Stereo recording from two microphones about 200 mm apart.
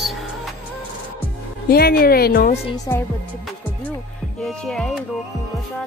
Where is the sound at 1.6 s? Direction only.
50° left (ahead or behind).